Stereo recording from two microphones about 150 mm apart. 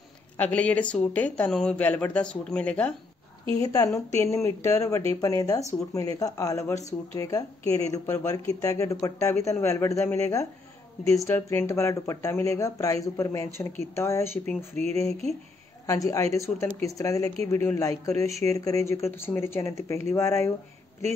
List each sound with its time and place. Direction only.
0.4 s a woman's voice: 10° left (ahead or behind)
3.5 s a woman's voice: 25° left (ahead or behind)
15.9 s a woman's voice: 20° left (ahead or behind)